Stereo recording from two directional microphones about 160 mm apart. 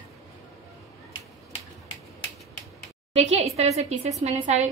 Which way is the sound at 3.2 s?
40° right (ahead or behind).